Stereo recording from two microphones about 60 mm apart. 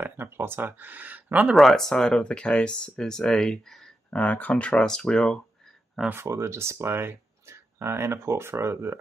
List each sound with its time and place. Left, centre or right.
0.0 s speech: right
1.6 s speech: centre
4.1 s speech: left
4.8 s speech: centre
6.2 s speech: right